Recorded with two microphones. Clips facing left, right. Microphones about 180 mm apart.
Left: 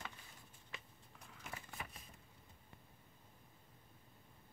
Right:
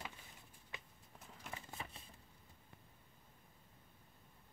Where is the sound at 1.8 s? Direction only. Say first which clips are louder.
Even; 30° right (ahead or behind).